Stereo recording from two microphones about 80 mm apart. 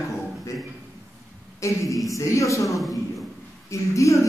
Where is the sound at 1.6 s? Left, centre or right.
Left.